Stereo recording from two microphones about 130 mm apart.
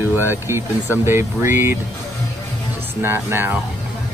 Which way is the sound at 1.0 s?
20° right (ahead or behind).